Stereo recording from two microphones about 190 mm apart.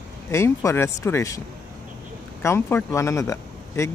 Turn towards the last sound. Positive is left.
turn(degrees=15)  # may be behind; listen again after turning